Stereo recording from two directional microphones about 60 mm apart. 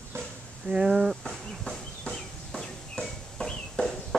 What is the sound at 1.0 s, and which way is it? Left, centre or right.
Speech, centre.